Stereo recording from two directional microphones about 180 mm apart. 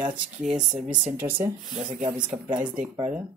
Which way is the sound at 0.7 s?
40° right (ahead or behind).